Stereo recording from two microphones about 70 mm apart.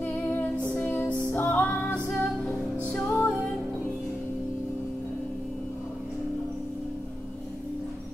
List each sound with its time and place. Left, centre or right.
0.0 s music: left